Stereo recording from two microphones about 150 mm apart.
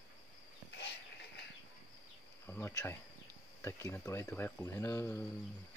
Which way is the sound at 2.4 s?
15° left (ahead or behind).